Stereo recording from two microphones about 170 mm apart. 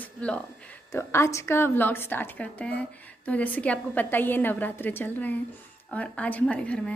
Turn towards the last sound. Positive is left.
turn(degrees=5)  # may be behind; listen again after turning